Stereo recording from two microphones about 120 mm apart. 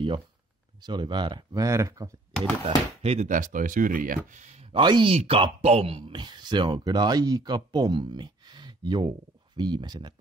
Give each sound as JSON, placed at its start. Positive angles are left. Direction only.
{"t": 0.7, "sound": "speech", "side_deg": -40}
{"t": 2.6, "sound": "speech", "side_deg": -60}
{"t": 4.3, "sound": "speech", "side_deg": -70}
{"t": 4.7, "sound": "speech", "side_deg": -40}
{"t": 5.1, "sound": "speech", "side_deg": -55}